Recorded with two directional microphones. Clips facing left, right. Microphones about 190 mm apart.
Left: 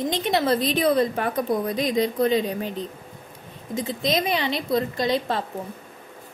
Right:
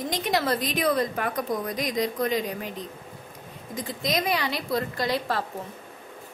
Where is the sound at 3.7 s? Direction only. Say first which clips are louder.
Left 4 dB; 25° left (ahead or behind).